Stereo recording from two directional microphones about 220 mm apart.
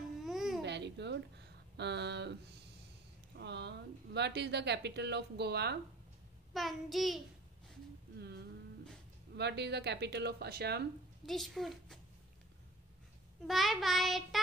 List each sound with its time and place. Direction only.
0.2 s babbling: centre (ahead or behind)
0.6 s a sound: 50° right (ahead or behind)
3.3 s speech: 50° right (ahead or behind)
6.5 s child singing: centre (ahead or behind)
8.2 s humming: 50° right (ahead or behind)
9.3 s speech: 50° right (ahead or behind)
11.2 s child singing: centre (ahead or behind)
13.5 s child singing: centre (ahead or behind)